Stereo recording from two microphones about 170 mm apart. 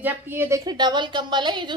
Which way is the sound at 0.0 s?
15° right (ahead or behind).